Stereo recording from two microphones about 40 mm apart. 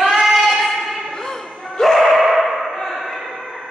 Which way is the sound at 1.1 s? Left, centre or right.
Centre.